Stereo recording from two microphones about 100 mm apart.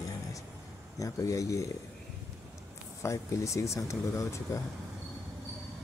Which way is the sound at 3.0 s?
30° left (ahead or behind).